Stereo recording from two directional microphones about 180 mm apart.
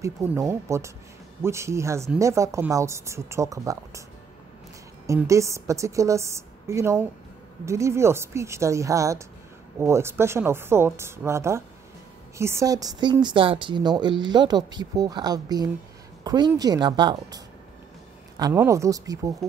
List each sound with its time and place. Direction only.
0.0 s a woman's voice: 15° right (ahead or behind)
5.0 s a woman's voice: 15° right (ahead or behind)
18.5 s a woman's voice: 15° right (ahead or behind)